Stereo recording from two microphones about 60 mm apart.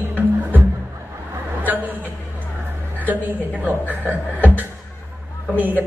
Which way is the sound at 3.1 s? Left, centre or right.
Right.